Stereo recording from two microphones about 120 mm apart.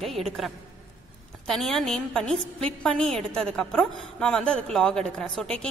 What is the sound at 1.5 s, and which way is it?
A woman's voice, 5° left (ahead or behind).